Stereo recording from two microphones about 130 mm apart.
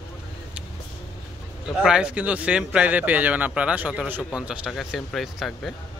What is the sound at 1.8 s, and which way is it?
A man's voice, 5° right (ahead or behind).